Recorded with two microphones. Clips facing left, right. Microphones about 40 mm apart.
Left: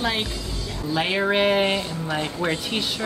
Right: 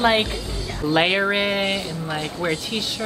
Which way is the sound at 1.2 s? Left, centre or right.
Centre.